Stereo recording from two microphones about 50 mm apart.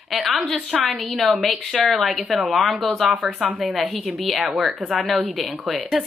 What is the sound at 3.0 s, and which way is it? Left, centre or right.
Speech, right.